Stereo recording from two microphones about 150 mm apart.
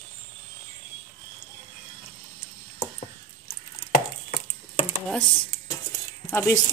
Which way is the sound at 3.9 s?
80° left.